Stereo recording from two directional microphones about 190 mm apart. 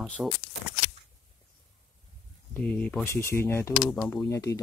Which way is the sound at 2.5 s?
5° left (ahead or behind).